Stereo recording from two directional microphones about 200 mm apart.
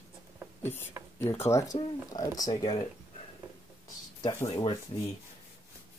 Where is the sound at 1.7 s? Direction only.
25° left (ahead or behind).